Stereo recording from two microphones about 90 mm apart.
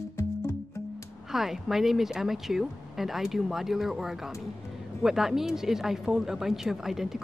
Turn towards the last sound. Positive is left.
turn(degrees=-5)  # may be behind; listen again after turning